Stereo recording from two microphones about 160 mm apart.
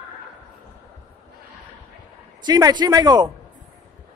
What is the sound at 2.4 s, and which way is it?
Speech, 25° right (ahead or behind).